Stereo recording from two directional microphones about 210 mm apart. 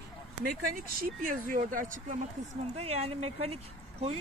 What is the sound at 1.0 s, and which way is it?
Speech, 40° right (ahead or behind).